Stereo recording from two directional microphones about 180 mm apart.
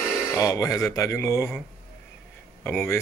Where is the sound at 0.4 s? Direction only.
20° left (ahead or behind).